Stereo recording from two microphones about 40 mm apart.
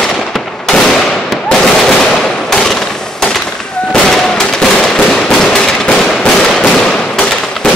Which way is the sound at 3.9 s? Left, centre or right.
Centre.